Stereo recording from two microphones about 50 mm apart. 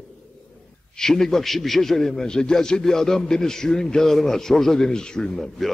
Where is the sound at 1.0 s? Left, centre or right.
Centre.